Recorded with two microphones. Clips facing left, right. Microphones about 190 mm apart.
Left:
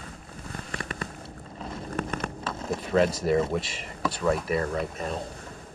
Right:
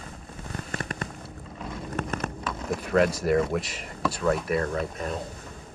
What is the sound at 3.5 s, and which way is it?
Speech, centre (ahead or behind).